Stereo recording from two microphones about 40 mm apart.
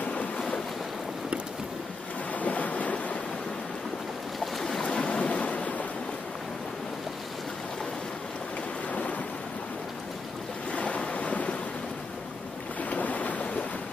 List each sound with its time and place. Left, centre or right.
2.3 s boat: left
4.6 s boat: centre
4.8 s waves: left
10.7 s waves: left
12.9 s boat: left